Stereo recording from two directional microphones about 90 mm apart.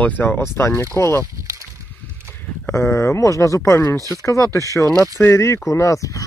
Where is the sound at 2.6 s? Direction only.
30° left (ahead or behind).